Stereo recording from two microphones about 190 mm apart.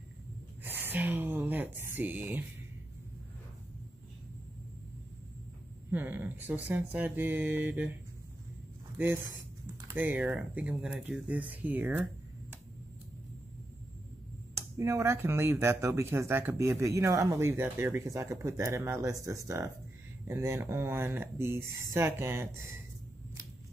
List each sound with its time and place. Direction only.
0.7 s a sound: 10° right (ahead or behind)
5.9 s speech: 10° right (ahead or behind)
8.9 s speech: 10° right (ahead or behind)
14.5 s speech: 15° right (ahead or behind)